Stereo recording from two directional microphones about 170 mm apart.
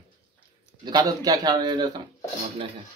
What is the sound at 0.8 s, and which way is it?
A man's voice, 25° right (ahead or behind).